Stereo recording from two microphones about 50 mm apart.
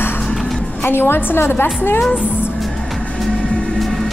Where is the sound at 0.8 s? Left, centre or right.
Left.